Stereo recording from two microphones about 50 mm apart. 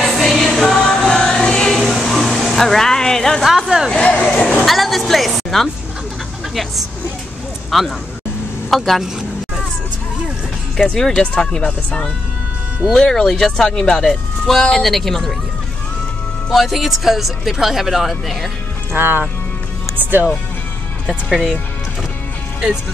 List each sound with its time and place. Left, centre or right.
0.0 s music: centre
1.3 s choir: centre
3.4 s speech: centre
3.9 s a sound: centre
4.6 s music: centre
6.5 s speech: centre
10.9 s speech: centre
12.9 s speech: centre
16.5 s speech: centre
18.9 s speech: right
21.3 s speech: centre